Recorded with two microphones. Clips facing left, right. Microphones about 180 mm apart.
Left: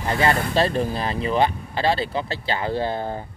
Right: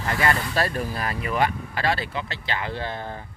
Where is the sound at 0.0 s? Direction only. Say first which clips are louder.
Left 3 dB; 25° left (ahead or behind).